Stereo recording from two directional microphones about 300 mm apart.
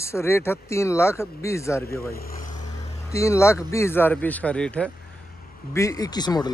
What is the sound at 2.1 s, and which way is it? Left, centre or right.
Vehicle, left.